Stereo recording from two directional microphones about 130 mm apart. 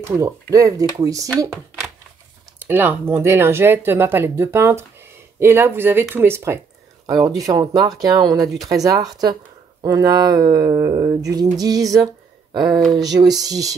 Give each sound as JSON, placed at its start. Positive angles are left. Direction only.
{"t": 0.1, "sound": "speech", "side_deg": -25}
{"t": 2.6, "sound": "speech", "side_deg": -15}